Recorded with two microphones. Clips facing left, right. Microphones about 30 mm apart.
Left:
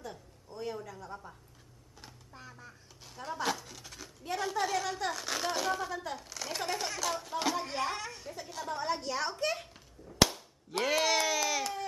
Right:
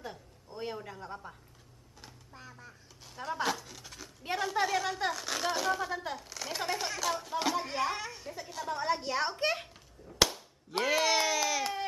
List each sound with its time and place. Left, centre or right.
0.0 s a woman's voice: right
2.0 s a sound: centre
3.4 s speech: centre
5.1 s speech: centre
9.0 s speech: right
10.0 s a sound: centre
10.8 s speech: centre